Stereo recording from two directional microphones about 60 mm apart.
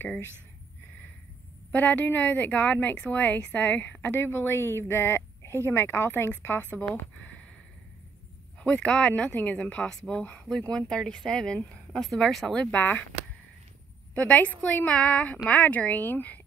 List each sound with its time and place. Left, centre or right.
1.7 s a woman's voice: left
8.5 s a woman's voice: centre
9.8 s speech: centre
10.1 s a woman's voice: left
10.5 s speech: centre
12.7 s a woman's voice: left
14.1 s a woman's voice: left